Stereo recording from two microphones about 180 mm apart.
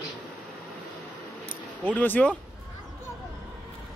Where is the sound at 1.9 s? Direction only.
10° left (ahead or behind).